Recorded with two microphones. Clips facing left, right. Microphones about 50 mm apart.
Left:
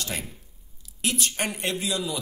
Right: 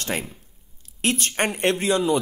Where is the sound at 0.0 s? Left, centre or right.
Right.